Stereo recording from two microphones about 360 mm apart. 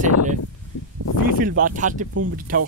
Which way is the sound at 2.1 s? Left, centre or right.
Right.